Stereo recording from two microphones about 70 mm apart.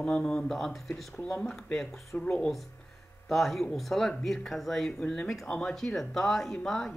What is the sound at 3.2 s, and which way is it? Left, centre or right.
Speech, centre.